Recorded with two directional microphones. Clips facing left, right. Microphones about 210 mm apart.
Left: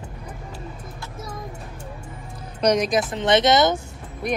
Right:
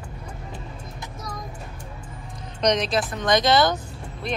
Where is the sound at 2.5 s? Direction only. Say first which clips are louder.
Left 3 dB; 10° left (ahead or behind).